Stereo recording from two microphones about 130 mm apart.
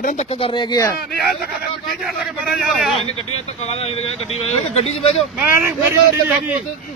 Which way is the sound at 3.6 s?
55° left (ahead or behind).